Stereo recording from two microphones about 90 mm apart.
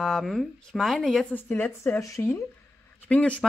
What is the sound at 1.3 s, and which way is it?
Speech, 20° left (ahead or behind).